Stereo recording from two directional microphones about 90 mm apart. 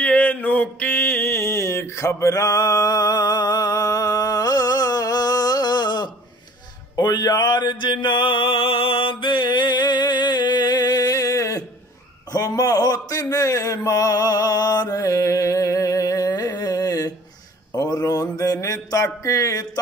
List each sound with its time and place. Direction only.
0.0 s mantra: 15° left (ahead or behind); by 6.1 s 55° left (ahead or behind)
7.0 s a sound: 50° left (ahead or behind)
17.7 s mantra: 45° left (ahead or behind)